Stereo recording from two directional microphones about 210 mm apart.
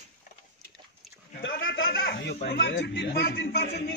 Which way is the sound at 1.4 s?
60° left (ahead or behind).